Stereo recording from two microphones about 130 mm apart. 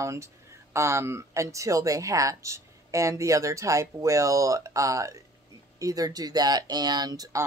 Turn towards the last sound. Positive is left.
turn(degrees=-25)  # may be behind; listen again after turning